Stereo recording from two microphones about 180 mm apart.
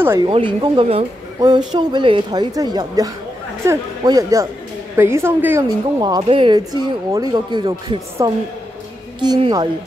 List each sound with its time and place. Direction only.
0.2 s a woman's voice: 30° right (ahead or behind)